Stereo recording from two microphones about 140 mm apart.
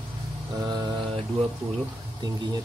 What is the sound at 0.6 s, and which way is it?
Speech, 25° right (ahead or behind).